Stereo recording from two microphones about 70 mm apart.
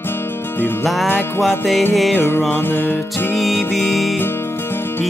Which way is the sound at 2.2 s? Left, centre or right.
Left.